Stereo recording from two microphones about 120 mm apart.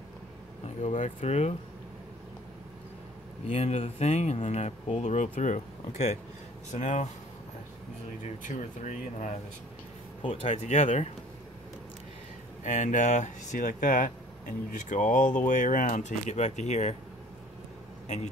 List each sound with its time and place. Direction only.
1.0 s speech: 60° left (ahead or behind)
3.4 s speech: 60° left (ahead or behind); by 7.1 s 85° left
8.4 s speech: 90° left
10.2 s speech: 65° left (ahead or behind); by 11.1 s 85° left
12.6 s speech: 90° left; by 16.9 s 70° left (ahead or behind)
18.0 s a man's voice: 75° left (ahead or behind)